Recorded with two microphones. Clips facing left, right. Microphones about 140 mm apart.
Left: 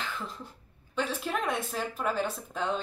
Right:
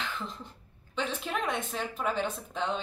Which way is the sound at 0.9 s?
5° left (ahead or behind).